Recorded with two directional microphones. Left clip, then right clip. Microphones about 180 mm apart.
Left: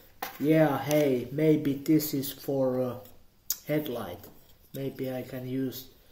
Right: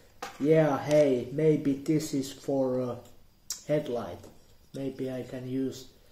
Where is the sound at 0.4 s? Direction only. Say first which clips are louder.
Even; 20° left (ahead or behind).